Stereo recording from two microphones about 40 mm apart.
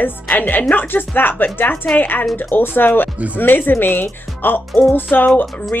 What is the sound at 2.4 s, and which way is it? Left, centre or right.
Music, left.